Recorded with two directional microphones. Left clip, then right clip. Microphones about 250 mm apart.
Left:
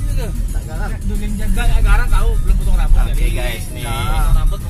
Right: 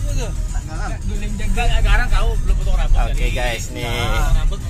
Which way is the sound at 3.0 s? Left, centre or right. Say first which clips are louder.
Right 4 dB; centre.